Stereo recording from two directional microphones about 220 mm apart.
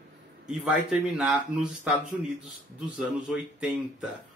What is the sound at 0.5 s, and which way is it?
Speech, 5° right (ahead or behind).